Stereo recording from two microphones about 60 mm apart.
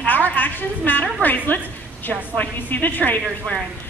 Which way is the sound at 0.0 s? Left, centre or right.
Left.